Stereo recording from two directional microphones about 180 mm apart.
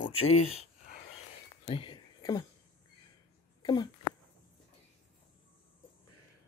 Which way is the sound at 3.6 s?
20° left (ahead or behind).